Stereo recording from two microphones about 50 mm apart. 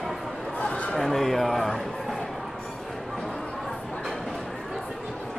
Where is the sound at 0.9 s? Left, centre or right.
Centre.